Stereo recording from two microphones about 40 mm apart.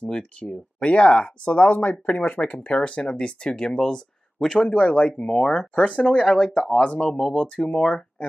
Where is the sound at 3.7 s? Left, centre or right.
Centre.